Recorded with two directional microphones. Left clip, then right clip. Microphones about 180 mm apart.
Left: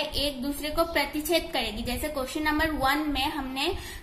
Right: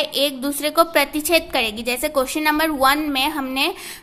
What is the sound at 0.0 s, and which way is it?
A woman's voice, 40° right (ahead or behind).